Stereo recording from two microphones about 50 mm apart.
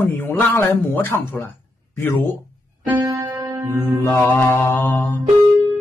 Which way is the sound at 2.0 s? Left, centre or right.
Left.